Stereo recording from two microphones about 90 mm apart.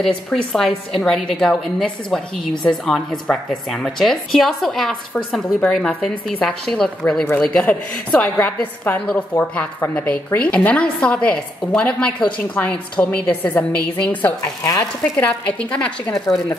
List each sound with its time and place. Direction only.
0.0 s a woman's voice: 5° left (ahead or behind)